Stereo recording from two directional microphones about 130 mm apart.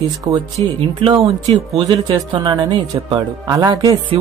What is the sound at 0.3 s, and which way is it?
Speech, 45° right (ahead or behind).